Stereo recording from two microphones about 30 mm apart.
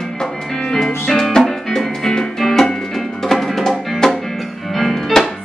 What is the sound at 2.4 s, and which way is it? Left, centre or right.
Music, centre.